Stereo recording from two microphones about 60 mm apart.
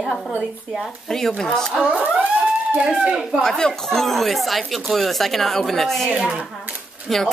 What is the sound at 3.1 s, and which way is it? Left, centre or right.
Speech, centre.